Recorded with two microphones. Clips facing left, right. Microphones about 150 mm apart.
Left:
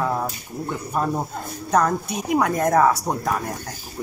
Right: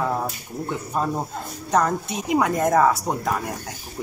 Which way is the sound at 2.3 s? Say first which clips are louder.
Even; 15° right (ahead or behind).